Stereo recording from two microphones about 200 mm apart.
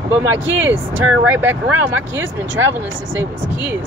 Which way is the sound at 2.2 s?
70° right (ahead or behind).